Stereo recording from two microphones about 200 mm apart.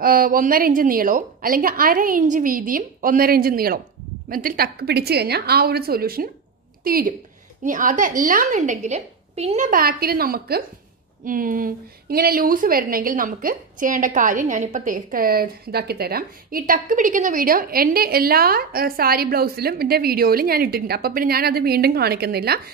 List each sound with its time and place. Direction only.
0.0 s a woman's voice: 45° right (ahead or behind)